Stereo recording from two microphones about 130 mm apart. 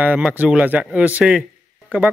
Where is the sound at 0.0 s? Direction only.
10° right (ahead or behind).